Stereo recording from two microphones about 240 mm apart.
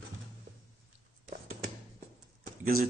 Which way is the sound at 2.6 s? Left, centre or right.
Right.